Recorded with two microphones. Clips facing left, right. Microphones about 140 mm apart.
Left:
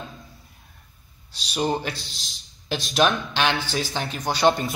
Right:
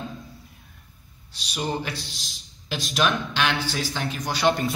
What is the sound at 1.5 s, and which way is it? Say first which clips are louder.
Speech: left 4 dB; 30° left (ahead or behind).